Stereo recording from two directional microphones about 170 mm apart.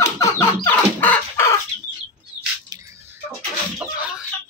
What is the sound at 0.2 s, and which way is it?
Chicken, 15° left (ahead or behind).